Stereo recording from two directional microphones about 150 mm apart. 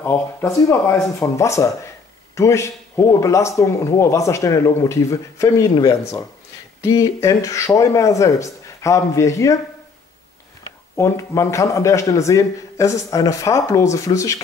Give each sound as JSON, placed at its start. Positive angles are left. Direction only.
{"t": 0.0, "sound": "a man's voice", "side_deg": 15}
{"t": 11.0, "sound": "a man's voice", "side_deg": 20}